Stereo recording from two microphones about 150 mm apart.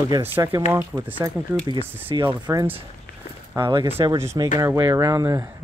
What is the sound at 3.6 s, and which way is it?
Speech, 35° right (ahead or behind).